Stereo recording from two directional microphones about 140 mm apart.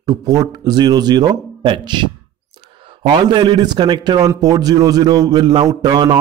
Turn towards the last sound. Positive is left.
turn(degrees=-30)  # may be behind; listen again after turning